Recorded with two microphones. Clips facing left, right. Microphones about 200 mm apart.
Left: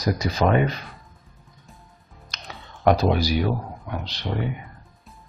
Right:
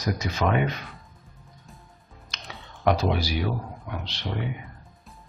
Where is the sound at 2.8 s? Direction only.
40° left (ahead or behind).